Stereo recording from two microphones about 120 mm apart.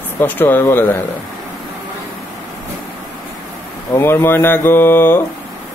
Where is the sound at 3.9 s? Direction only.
20° left (ahead or behind).